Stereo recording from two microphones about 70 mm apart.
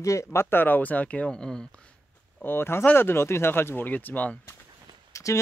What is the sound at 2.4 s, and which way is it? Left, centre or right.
Speech, left.